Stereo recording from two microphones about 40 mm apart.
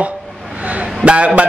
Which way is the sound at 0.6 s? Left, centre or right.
Right.